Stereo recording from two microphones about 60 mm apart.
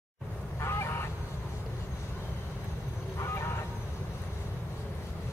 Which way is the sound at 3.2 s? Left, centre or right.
Left.